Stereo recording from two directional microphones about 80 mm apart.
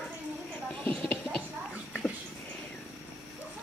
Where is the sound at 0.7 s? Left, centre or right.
Centre.